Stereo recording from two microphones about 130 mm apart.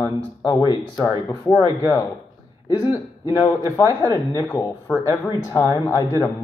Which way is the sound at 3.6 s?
25° right (ahead or behind).